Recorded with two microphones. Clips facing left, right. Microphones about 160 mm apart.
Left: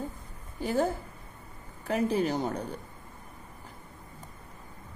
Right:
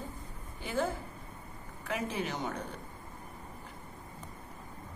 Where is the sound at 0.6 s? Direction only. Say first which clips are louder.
Left 5 dB; 40° left (ahead or behind).